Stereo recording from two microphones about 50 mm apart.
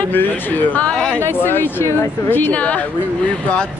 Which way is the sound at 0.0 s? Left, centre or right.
Left.